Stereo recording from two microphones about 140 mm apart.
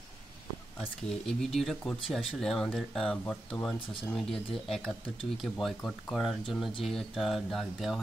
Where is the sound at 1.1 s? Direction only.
5° left (ahead or behind).